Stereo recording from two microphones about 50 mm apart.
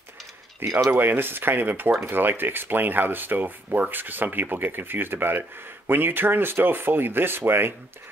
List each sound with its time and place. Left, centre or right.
0.6 s speech: right